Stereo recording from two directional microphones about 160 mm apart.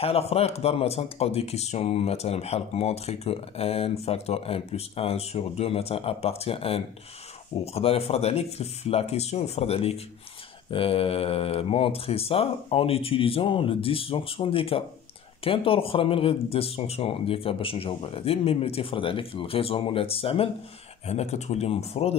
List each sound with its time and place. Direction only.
0.0 s speech: 40° left (ahead or behind)